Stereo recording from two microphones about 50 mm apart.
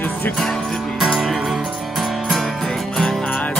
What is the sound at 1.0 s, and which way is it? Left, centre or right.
Music, centre.